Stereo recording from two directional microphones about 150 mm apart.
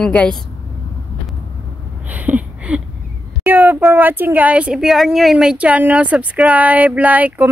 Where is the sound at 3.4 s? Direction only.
15° right (ahead or behind).